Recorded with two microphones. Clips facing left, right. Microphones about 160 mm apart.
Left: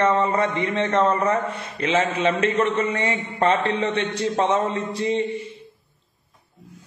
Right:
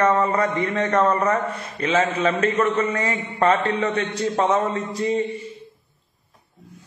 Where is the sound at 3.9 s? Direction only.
35° right (ahead or behind).